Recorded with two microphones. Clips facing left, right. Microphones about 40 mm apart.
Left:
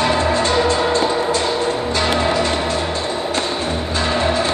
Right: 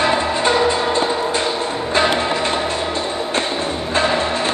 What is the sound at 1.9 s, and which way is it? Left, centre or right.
Music, right.